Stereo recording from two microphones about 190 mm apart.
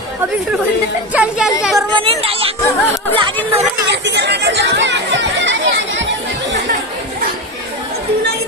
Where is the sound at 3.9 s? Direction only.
65° right (ahead or behind).